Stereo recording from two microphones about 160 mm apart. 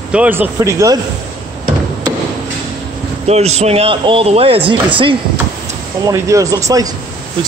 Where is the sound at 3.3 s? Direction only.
40° right (ahead or behind).